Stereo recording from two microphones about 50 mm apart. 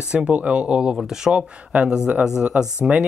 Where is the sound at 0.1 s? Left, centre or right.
Right.